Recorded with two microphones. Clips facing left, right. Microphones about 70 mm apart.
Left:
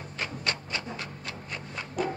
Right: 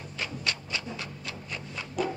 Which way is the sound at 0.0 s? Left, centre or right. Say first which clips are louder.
Left 1 dB; left.